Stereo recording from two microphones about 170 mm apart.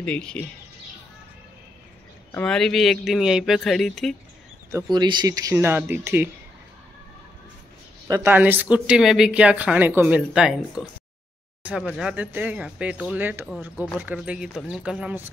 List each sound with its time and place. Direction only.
0.0 s speech: 5° left (ahead or behind)
2.3 s speech: 5° left (ahead or behind)
4.6 s speech: 20° right (ahead or behind)
8.1 s speech: 15° right (ahead or behind)
11.6 s speech: 5° right (ahead or behind)